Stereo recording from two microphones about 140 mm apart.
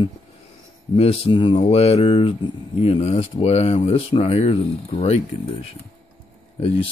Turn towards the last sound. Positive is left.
turn(degrees=45)  # may be behind; listen again after turning